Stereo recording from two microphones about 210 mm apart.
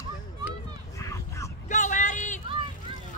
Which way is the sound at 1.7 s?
35° left (ahead or behind).